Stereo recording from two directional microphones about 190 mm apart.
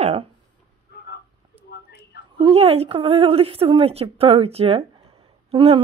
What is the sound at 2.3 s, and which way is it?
A woman's voice, 30° right (ahead or behind).